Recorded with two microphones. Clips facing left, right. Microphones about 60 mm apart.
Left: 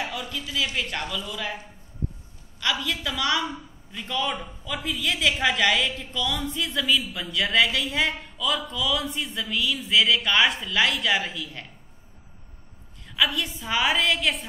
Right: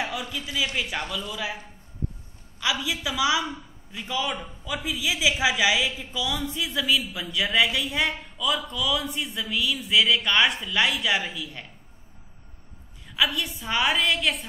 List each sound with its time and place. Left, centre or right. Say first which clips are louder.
0.0 s a woman's voice: right 1 dB; right; by 1.6 s centre
2.6 s a woman's voice: even; centre
13.1 s a man's voice: left 1 dB; centre